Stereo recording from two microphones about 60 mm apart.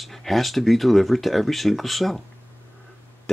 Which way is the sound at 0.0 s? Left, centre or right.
Centre.